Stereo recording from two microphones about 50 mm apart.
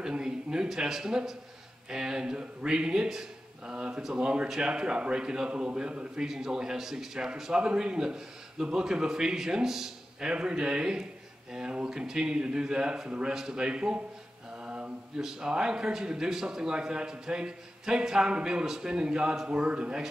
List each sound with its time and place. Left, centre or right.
0.0 s a man's voice: centre
14.6 s mantra: right
15.2 s a man's voice: centre